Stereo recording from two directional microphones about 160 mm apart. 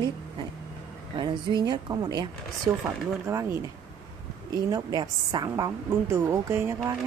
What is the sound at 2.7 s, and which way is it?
Speech, 5° right (ahead or behind).